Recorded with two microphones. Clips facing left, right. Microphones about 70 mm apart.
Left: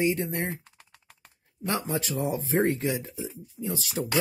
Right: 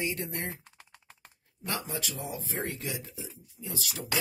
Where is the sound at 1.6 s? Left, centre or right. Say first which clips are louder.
Left 6 dB; left.